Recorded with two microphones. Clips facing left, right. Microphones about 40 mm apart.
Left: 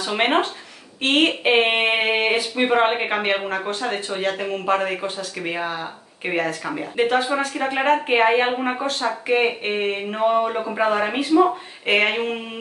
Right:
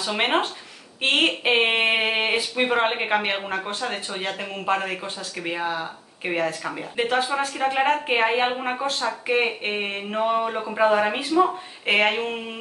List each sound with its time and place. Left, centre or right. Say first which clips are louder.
0.0 s speech: left 3 dB; centre
4.4 s speech: left 1 dB; centre